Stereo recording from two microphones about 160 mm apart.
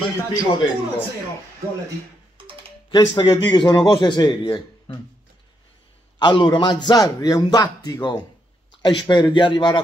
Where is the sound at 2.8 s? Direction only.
30° left (ahead or behind).